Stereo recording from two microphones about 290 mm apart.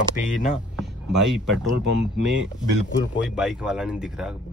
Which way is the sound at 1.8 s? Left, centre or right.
Right.